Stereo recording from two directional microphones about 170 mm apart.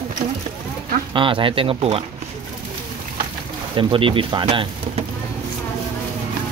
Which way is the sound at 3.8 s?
30° right (ahead or behind).